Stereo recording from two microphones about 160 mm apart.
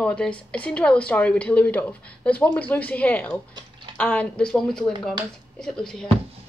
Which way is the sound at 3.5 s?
30° right (ahead or behind).